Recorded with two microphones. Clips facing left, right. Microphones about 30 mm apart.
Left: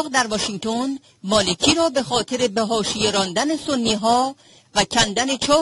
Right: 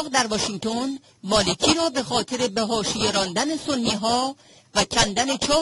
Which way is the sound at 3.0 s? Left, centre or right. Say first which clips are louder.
Left 3 dB; left.